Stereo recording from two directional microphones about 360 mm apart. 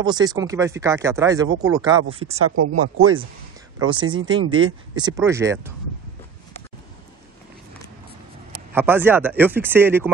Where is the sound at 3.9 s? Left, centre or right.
Centre.